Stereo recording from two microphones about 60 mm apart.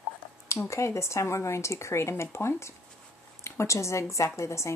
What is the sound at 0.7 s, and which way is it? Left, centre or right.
A woman's voice, left.